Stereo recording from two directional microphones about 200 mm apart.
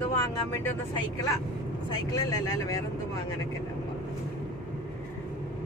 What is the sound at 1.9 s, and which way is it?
Speech, 20° left (ahead or behind).